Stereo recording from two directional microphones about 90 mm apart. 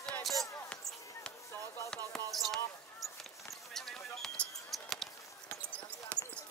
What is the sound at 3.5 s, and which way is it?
Basketball bounce, 5° left (ahead or behind).